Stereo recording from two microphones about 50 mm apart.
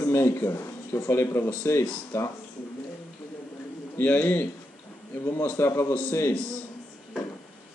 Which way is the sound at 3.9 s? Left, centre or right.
Left.